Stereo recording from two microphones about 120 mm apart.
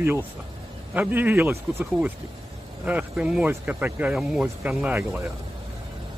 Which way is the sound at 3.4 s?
15° right (ahead or behind).